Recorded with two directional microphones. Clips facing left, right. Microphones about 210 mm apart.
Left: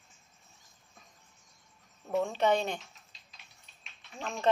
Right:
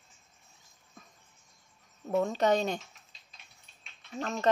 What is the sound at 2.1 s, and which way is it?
Speech, 40° right (ahead or behind).